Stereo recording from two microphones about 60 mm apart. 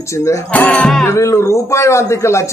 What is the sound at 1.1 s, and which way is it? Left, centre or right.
A man's voice, left.